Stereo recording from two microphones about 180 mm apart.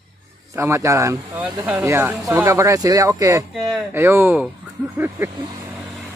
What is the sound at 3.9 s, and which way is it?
Speech, 10° right (ahead or behind).